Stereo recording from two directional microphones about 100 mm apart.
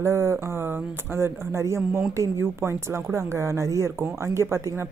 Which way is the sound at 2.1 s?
30° right (ahead or behind).